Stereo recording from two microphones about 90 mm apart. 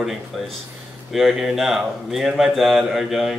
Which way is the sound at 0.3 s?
Centre (ahead or behind).